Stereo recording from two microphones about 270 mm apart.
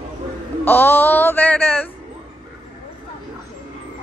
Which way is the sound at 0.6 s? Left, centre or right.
Centre.